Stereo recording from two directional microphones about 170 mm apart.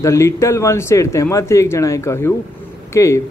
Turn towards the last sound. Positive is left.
turn(degrees=20)  # may be behind; listen again after turning